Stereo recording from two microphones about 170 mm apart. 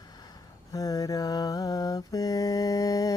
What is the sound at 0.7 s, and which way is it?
Mantra, 20° left (ahead or behind).